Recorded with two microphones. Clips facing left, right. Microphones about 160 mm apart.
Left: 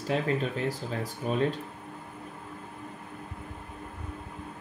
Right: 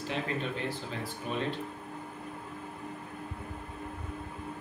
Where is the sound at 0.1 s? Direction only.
40° left (ahead or behind).